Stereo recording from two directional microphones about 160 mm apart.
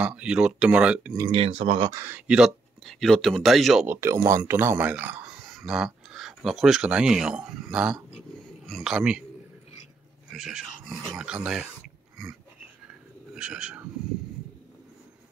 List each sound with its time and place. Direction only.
0.0 s speech: 5° right (ahead or behind)
1.2 s speech: 35° right (ahead or behind)
1.9 s speech: 15° right (ahead or behind)
3.8 s speech: 15° right (ahead or behind)
10.3 s speech: 5° right (ahead or behind)
13.3 s speech: 5° right (ahead or behind)